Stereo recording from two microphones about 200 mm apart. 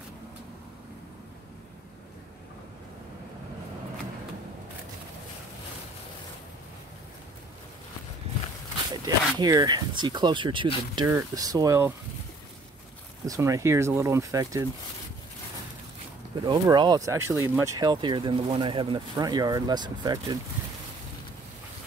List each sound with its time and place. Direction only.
8.9 s speech: 20° right (ahead or behind)
13.2 s speech: 15° right (ahead or behind)
16.3 s speech: 20° right (ahead or behind)